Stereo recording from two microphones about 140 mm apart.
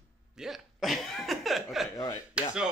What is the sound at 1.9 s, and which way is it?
Speech, 25° left (ahead or behind).